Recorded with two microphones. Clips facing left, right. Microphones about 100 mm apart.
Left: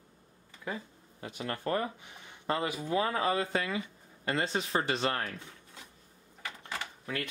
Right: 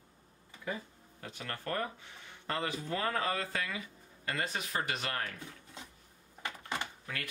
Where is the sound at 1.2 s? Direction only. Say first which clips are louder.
Left 6 dB; 20° left (ahead or behind).